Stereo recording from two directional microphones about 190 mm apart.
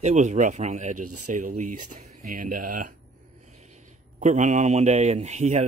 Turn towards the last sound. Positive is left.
turn(degrees=-35)  # may be behind; listen again after turning